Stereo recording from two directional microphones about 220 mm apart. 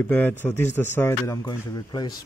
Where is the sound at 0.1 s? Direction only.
10° left (ahead or behind).